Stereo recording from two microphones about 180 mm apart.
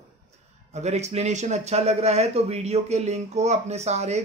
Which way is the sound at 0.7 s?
40° right (ahead or behind).